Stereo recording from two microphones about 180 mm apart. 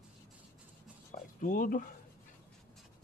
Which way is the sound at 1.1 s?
50° left (ahead or behind).